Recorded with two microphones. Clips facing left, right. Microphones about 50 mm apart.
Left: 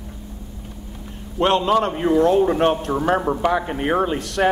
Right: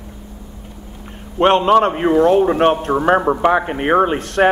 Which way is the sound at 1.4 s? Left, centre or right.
Right.